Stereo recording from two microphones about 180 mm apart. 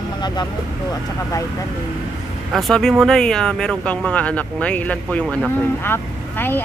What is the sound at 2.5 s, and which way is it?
Speech, centre (ahead or behind).